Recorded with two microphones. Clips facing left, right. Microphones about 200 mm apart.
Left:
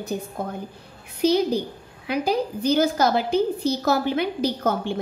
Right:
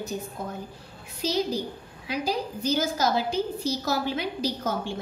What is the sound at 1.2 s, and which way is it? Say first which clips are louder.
A woman's voice: left 7 dB; 55° left (ahead or behind).